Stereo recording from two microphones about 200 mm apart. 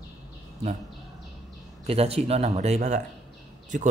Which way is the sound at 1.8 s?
30° right (ahead or behind).